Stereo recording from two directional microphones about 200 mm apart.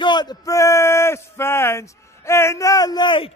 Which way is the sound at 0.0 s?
20° left (ahead or behind).